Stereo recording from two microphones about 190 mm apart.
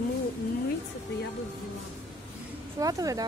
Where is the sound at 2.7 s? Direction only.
20° right (ahead or behind).